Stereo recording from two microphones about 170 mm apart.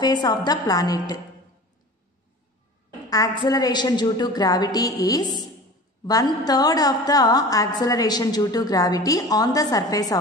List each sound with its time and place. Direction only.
0.0 s a woman's voice: 25° left (ahead or behind)
3.1 s a woman's voice: 20° left (ahead or behind)